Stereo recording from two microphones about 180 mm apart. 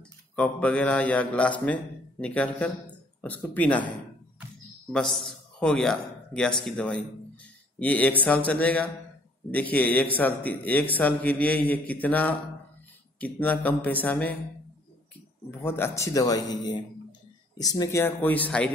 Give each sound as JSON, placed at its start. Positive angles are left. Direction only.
{"t": 0.4, "sound": "a man's voice", "side_deg": 5}
{"t": 4.9, "sound": "a man's voice", "side_deg": 0}
{"t": 15.5, "sound": "a man's voice", "side_deg": 15}